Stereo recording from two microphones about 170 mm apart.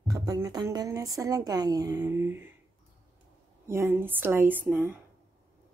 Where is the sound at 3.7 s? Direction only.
15° right (ahead or behind).